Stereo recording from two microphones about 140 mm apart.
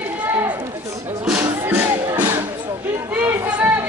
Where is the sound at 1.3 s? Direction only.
15° right (ahead or behind).